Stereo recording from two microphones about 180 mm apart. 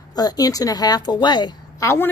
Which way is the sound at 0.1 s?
20° left (ahead or behind).